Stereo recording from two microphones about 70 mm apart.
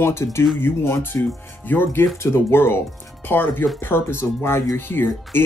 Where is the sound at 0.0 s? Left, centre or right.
Left.